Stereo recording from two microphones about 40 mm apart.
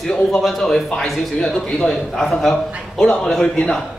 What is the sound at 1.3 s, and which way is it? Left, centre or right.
Speech, centre.